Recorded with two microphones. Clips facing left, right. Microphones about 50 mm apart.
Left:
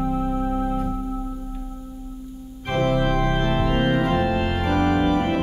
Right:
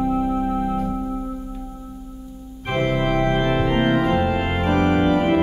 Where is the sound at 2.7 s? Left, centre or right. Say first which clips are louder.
Even; centre.